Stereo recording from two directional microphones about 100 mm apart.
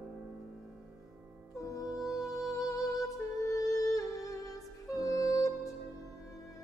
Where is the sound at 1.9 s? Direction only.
Centre (ahead or behind).